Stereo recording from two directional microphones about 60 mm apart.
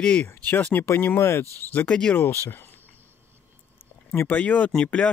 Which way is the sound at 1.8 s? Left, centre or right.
Centre.